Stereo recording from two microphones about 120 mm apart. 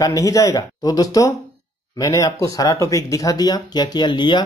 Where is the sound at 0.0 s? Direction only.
30° left (ahead or behind).